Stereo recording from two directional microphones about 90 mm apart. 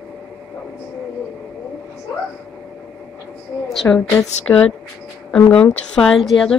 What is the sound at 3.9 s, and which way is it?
Speech, 25° left (ahead or behind).